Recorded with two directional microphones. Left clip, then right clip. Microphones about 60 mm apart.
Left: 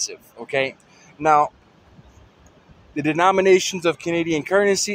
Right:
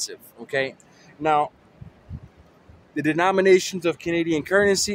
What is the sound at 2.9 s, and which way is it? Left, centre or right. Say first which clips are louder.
Speech: left 3 dB; centre.